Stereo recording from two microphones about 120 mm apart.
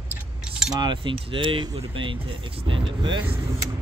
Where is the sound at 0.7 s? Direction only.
40° right (ahead or behind).